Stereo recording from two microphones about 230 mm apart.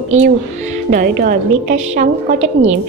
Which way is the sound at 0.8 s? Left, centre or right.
Right.